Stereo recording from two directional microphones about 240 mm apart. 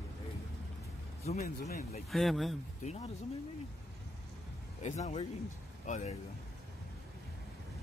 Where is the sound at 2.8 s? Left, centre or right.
Left.